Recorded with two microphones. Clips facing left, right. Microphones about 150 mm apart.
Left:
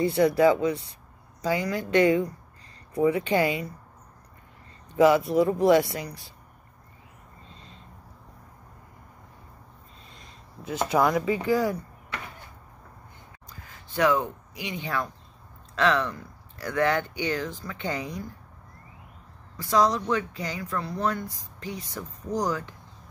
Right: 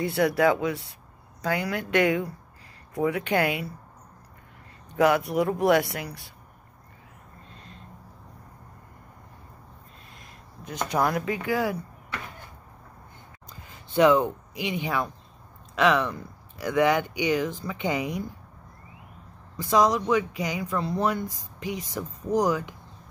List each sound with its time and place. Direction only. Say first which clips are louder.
0.0 s speech: left 2 dB; centre (ahead or behind)
4.9 s speech: left 3 dB; centre (ahead or behind)
10.1 s a sound: left 1 dB; 5° left (ahead or behind)
11.4 s speech: left 1 dB; centre (ahead or behind)
13.9 s speech: right 4 dB; 20° right (ahead or behind)
19.6 s speech: right 1 dB; 15° right (ahead or behind)